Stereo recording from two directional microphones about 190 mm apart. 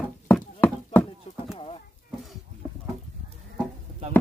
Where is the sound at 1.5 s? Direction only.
30° left (ahead or behind).